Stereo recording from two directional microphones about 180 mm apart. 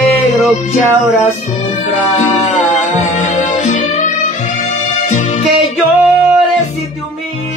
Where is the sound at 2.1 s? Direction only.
40° left (ahead or behind).